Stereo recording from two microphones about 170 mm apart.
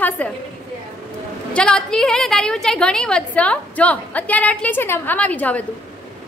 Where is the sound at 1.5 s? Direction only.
5° left (ahead or behind).